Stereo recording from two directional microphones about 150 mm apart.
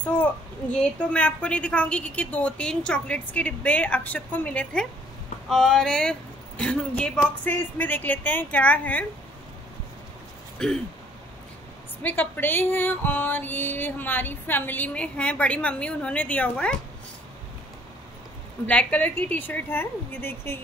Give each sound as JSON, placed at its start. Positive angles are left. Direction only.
{"t": 0.7, "sound": "music", "side_deg": 10}
{"t": 5.5, "sound": "speech", "side_deg": 5}
{"t": 7.4, "sound": "music", "side_deg": 10}
{"t": 10.6, "sound": "speech", "side_deg": 5}
{"t": 12.0, "sound": "music", "side_deg": 10}
{"t": 18.7, "sound": "music", "side_deg": 10}